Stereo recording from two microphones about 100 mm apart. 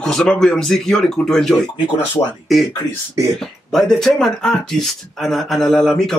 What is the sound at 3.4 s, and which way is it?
Speech, 5° left (ahead or behind).